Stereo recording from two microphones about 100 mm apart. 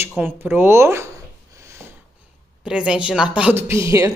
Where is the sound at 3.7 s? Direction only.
30° right (ahead or behind).